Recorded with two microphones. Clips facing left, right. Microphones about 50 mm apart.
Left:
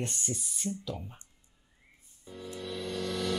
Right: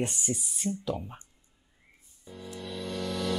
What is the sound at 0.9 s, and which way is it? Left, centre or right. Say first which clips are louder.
Speech: right 5 dB; right.